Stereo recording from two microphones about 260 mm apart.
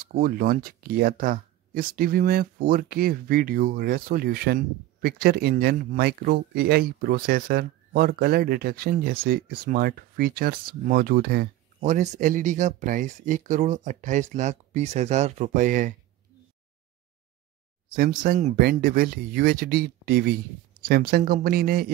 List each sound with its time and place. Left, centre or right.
0.0 s speech: right
17.9 s speech: right